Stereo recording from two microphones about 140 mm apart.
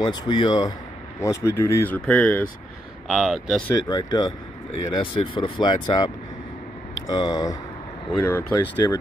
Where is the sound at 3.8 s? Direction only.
25° left (ahead or behind).